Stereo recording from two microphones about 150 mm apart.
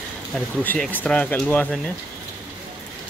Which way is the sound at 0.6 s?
10° left (ahead or behind).